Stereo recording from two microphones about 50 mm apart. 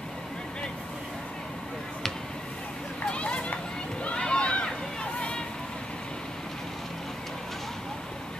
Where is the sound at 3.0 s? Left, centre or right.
Left.